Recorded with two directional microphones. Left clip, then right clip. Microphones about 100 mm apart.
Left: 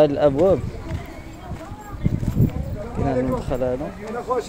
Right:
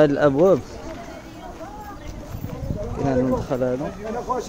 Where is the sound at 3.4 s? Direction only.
30° right (ahead or behind).